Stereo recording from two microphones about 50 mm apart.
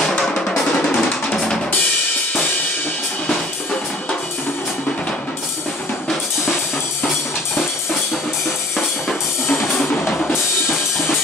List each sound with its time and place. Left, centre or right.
0.3 s drum: centre